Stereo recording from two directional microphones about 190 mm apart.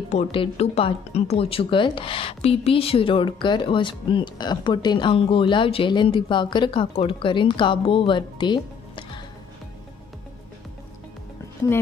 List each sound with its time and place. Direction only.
0.1 s speech: 30° left (ahead or behind)